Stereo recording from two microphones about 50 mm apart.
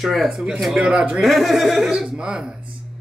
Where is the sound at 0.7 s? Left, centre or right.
Right.